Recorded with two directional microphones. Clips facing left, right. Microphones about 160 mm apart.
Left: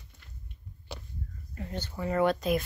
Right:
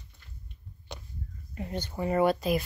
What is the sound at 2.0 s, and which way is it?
Speech, 10° right (ahead or behind).